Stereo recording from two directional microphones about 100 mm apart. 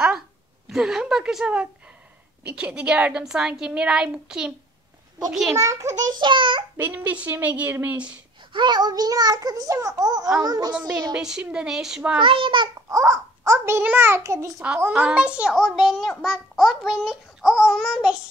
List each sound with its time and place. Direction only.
0.7 s a child's voice: 5° right (ahead or behind)
5.6 s a child's voice: 30° right (ahead or behind)
6.1 s a child's voice: 55° right (ahead or behind)
6.8 s a woman's voice: 20° right (ahead or behind)
8.5 s a child's voice: 50° right (ahead or behind)
10.7 s a woman's voice: 10° right (ahead or behind)
12.2 s a child's voice: 60° right (ahead or behind)
12.9 s a child's voice: 35° right (ahead or behind)
14.9 s a child's voice: 10° right (ahead or behind)